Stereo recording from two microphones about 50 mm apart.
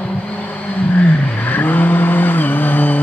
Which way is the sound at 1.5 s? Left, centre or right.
Left.